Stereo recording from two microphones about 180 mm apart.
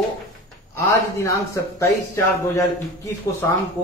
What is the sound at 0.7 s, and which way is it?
A man's voice, 15° left (ahead or behind).